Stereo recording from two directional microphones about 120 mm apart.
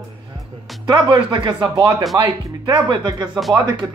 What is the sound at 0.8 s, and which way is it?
Speech, 35° right (ahead or behind).